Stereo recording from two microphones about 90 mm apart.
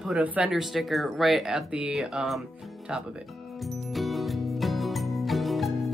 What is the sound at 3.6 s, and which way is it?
Music, centre (ahead or behind).